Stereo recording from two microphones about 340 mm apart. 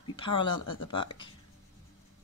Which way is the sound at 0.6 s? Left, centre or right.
Left.